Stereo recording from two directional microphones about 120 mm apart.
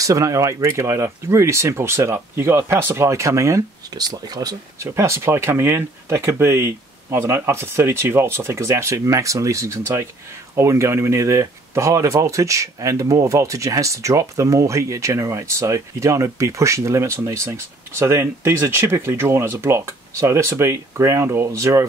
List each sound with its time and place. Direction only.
0.0 s speech: 30° right (ahead or behind)